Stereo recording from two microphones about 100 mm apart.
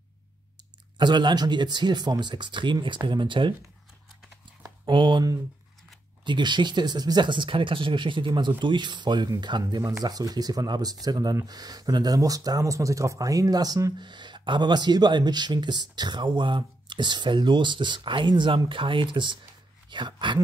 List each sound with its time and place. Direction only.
0.9 s speech: 50° right (ahead or behind)
4.8 s speech: 50° right (ahead or behind)
6.2 s speech: 50° right (ahead or behind)
13.9 s speech: 50° right (ahead or behind)